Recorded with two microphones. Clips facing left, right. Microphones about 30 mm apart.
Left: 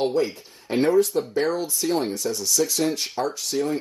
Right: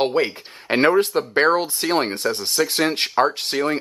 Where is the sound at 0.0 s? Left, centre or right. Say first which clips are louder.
Right 3 dB; right.